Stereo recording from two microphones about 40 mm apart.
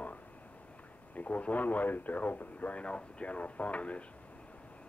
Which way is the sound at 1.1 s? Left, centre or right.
Left.